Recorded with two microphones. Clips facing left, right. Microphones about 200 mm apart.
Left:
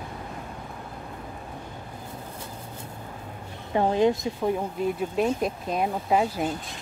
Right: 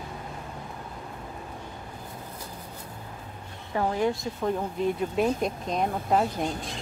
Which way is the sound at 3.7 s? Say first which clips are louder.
Left 4 dB; 25° left (ahead or behind).